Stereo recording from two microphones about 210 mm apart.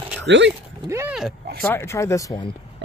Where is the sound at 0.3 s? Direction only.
55° right (ahead or behind).